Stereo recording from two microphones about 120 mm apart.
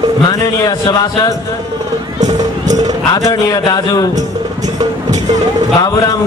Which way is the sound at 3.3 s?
30° left (ahead or behind).